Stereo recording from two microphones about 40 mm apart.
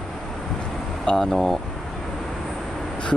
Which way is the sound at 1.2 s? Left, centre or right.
Centre.